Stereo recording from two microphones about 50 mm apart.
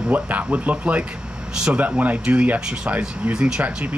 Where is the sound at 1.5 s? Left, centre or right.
Centre.